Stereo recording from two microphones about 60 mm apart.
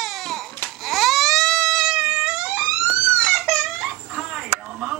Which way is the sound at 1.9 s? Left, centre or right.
Centre.